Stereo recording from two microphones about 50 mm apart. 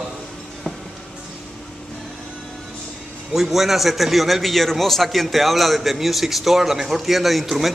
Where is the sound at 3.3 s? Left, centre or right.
Centre.